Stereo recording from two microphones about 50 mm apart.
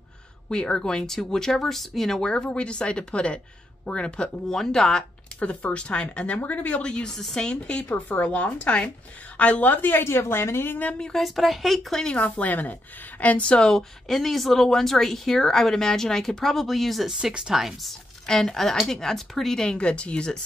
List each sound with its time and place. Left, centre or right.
0.5 s speech: centre
4.6 s speech: centre
5.4 s speech: left
7.9 s a woman's voice: left
11.0 s speech: centre
11.2 s speech: centre
12.2 s speech: left
13.5 s speech: centre
14.0 s speech: centre
17.1 s speech: centre
18.2 s speech: centre